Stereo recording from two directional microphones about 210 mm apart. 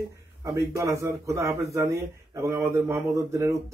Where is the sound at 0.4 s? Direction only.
15° right (ahead or behind).